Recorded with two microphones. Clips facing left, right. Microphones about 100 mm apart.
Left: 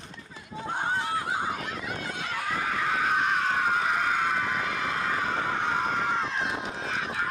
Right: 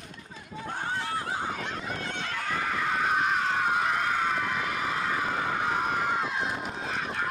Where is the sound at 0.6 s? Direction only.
20° left (ahead or behind).